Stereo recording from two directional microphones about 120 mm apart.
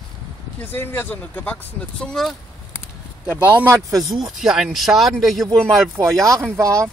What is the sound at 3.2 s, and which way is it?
Speech, 15° right (ahead or behind).